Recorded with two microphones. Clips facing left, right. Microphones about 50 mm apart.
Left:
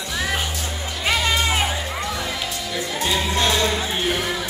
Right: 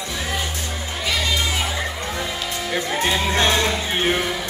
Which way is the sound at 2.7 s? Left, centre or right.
Right.